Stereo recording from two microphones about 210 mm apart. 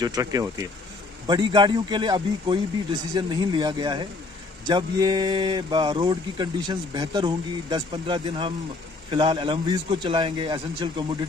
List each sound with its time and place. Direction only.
0.0 s speech: 15° right (ahead or behind)